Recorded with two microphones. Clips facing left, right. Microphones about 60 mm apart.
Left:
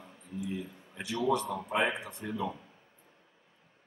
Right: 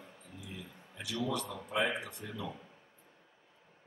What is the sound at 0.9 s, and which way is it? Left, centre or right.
A man's voice, left.